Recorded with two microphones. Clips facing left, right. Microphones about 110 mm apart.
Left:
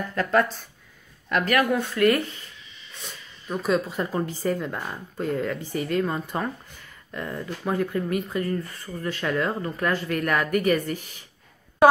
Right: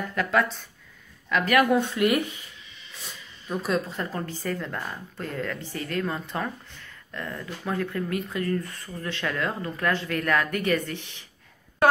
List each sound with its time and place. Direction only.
0.1 s speech: centre (ahead or behind)
1.8 s speech: 15° right (ahead or behind)
3.0 s a sound: centre (ahead or behind)
3.9 s speech: 15° left (ahead or behind)